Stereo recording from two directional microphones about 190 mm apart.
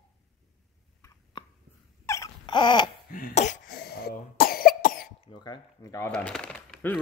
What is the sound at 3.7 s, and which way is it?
Cough, 55° left (ahead or behind).